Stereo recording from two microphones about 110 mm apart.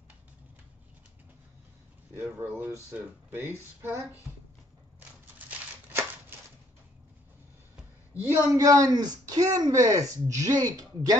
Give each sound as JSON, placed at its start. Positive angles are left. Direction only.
{"t": 2.3, "sound": "speech", "side_deg": -20}
{"t": 8.1, "sound": "a man's voice", "side_deg": -20}